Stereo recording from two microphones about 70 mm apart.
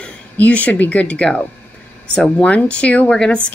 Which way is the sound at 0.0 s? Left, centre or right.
Centre.